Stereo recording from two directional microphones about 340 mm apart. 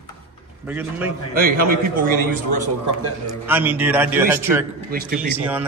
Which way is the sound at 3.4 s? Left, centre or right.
Centre.